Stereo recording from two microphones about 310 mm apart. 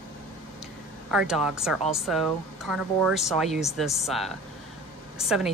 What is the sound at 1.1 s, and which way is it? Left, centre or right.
Speech, centre.